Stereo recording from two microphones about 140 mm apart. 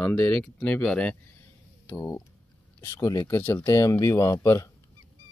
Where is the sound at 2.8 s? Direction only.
25° left (ahead or behind).